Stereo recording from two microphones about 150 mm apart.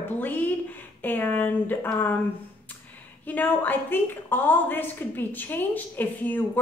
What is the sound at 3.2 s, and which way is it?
A woman's voice, 10° left (ahead or behind).